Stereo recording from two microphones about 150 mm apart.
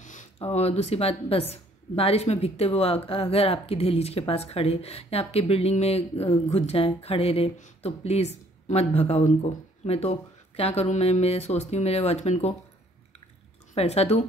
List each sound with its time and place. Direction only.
0.0 s speech: 55° left (ahead or behind)
13.7 s speech: 45° left (ahead or behind)